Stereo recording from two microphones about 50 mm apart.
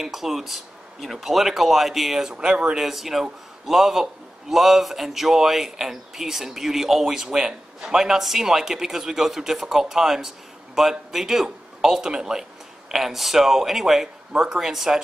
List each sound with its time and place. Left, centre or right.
0.0 s speech: centre